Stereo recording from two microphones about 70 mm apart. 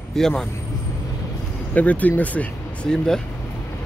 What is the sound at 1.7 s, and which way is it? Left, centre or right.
Speech, left.